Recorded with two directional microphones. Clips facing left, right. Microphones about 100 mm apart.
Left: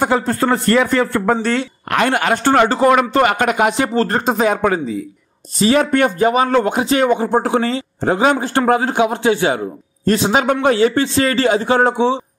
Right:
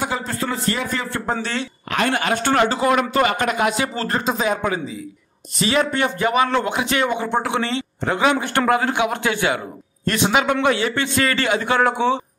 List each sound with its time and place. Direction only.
0.0 s a man's voice: 55° left (ahead or behind)
2.3 s speech: 40° left (ahead or behind)
2.6 s a man's voice: 50° left (ahead or behind); by 12.2 s 25° left (ahead or behind)